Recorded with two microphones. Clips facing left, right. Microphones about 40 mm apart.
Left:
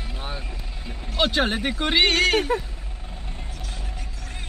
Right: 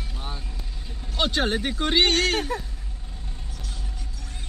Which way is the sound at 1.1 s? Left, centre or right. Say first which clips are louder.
Left 2 dB; centre.